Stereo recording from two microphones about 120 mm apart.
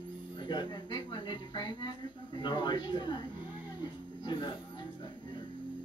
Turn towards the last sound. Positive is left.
turn(degrees=35)  # may be behind; listen again after turning